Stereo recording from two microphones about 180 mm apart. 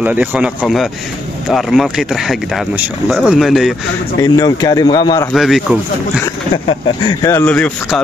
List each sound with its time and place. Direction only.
0.0 s speech: 10° right (ahead or behind)
4.2 s speech: 20° left (ahead or behind)
5.3 s speech: centre (ahead or behind)
7.1 s speech: 15° left (ahead or behind)
7.4 s speech: 5° left (ahead or behind)